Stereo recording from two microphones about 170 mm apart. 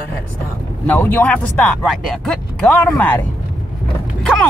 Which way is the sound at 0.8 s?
10° left (ahead or behind).